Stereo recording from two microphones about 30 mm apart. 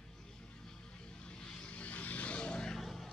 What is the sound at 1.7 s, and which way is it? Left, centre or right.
Vehicle, left.